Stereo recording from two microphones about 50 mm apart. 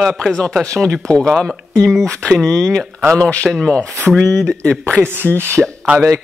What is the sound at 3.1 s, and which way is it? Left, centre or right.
Speech, left.